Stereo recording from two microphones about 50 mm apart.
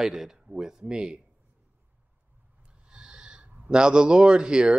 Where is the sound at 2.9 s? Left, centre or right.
Centre.